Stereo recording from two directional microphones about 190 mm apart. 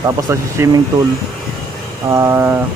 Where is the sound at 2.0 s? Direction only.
15° right (ahead or behind).